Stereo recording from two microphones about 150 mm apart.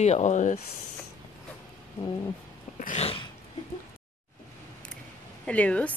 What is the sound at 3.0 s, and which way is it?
Dog, 40° left (ahead or behind).